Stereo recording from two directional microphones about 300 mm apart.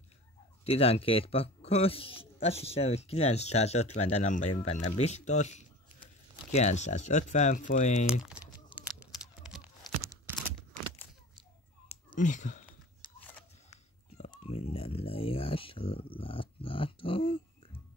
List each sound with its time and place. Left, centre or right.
0.7 s speech: centre
8.1 s speech: centre
8.7 s tearing: centre
12.2 s speech: left
13.2 s a sound: centre
14.1 s a sound: left